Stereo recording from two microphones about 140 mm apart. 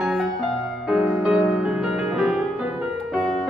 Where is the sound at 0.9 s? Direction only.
5° right (ahead or behind).